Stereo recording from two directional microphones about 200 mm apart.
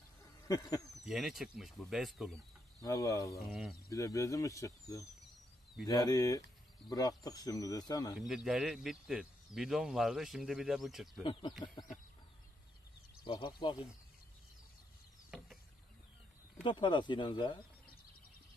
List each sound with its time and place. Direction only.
0.5 s speech: 20° left (ahead or behind)
1.0 s speech: centre (ahead or behind)
2.8 s speech: 15° left (ahead or behind)
3.3 s speech: centre (ahead or behind)
3.9 s speech: 15° left (ahead or behind)
8.2 s speech: centre (ahead or behind)
11.8 s speech: 25° left (ahead or behind)
13.2 s speech: 25° left (ahead or behind)
15.3 s a sound: centre (ahead or behind)
16.6 s speech: 25° left (ahead or behind)